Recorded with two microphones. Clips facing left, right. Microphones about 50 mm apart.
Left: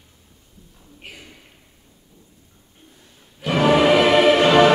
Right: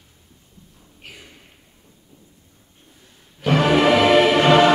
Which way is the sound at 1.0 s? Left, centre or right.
Centre.